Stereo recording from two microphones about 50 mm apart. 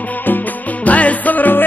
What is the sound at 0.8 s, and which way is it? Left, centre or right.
Music, left.